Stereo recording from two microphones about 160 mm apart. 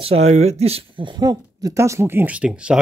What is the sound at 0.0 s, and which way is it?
Speech, 40° right (ahead or behind).